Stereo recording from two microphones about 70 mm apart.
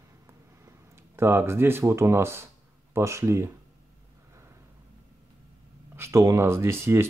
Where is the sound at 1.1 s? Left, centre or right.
Right.